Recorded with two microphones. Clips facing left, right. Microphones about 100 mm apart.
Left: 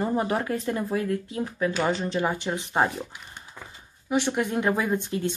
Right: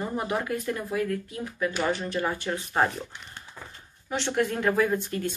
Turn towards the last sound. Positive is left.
turn(degrees=20)  # may be behind; listen again after turning